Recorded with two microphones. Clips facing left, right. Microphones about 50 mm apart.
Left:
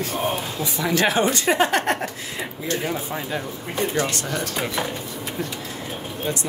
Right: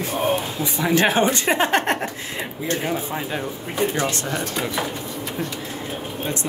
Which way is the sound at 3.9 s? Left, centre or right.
Right.